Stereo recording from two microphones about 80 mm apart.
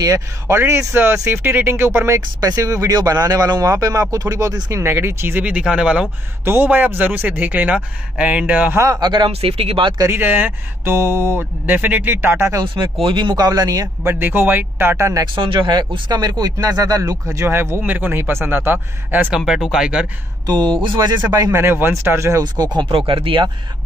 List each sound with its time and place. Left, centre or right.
0.5 s speech: right
5.4 s speech: centre
6.4 s speech: right
8.9 s speech: right
10.0 s speech: right
13.0 s speech: right
13.4 s speech: right
14.0 s speech: right
15.3 s speech: right
16.1 s speech: right
19.3 s speech: centre
20.4 s speech: right
21.5 s speech: right
22.4 s speech: right